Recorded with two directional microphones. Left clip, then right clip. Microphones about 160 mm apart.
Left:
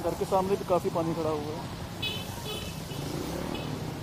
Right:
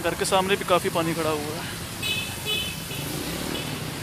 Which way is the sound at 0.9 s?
25° right (ahead or behind).